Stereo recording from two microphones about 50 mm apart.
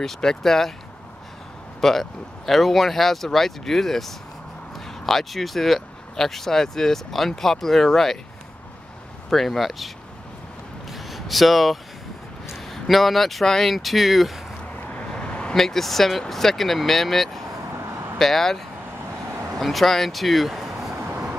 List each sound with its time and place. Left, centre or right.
0.0 s speech: centre
1.8 s speech: centre
9.3 s speech: centre
10.9 s a sound: centre
12.4 s speech: centre
14.9 s vehicle: left
15.6 s speech: centre